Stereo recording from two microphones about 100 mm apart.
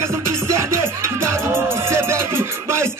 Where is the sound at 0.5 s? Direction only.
30° right (ahead or behind).